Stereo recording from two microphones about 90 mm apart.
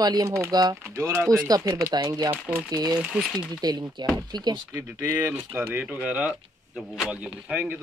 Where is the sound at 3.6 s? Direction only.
50° right (ahead or behind).